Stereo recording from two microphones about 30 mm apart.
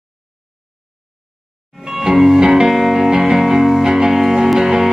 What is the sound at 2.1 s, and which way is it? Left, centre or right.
Music, centre.